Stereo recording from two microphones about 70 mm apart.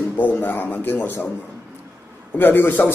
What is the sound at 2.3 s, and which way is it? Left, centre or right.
Speech, left.